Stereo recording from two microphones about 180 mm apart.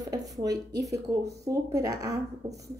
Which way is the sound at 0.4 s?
20° right (ahead or behind).